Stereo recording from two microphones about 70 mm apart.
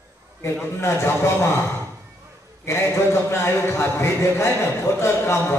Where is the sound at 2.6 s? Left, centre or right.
Left.